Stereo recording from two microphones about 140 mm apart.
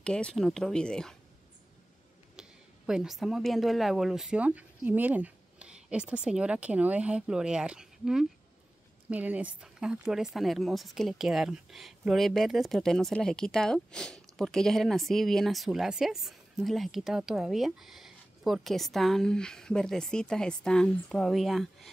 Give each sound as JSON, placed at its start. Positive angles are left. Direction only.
{"t": 0.0, "sound": "speech", "side_deg": 5}
{"t": 2.4, "sound": "a sound", "side_deg": -5}
{"t": 2.9, "sound": "speech", "side_deg": -5}